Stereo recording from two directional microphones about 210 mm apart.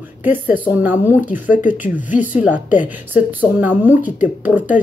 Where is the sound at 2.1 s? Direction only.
40° left (ahead or behind).